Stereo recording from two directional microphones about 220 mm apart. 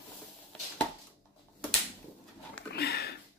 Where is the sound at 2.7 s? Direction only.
45° left (ahead or behind).